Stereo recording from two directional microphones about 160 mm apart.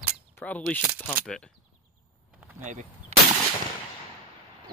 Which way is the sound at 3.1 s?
40° right (ahead or behind).